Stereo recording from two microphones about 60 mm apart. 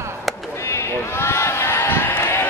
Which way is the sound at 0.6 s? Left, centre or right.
Left.